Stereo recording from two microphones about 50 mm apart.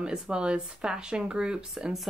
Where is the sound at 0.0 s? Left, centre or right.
Centre.